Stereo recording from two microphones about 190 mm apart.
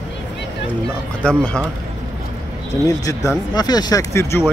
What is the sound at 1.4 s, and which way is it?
Speech, 5° left (ahead or behind).